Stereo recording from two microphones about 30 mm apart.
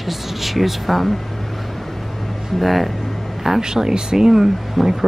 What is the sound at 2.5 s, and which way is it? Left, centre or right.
Speech, centre.